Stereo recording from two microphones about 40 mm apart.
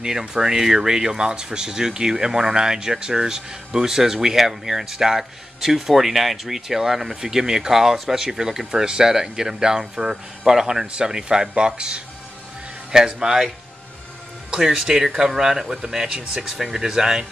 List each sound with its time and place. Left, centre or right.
0.3 s speech: centre
14.5 s speech: centre